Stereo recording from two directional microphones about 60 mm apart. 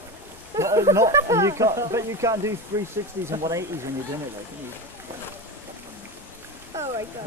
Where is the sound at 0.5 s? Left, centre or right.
Right.